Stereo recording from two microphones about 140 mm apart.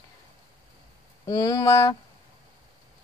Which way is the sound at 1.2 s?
30° left (ahead or behind).